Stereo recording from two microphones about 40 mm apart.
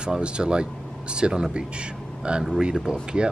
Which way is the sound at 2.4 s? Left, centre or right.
Centre.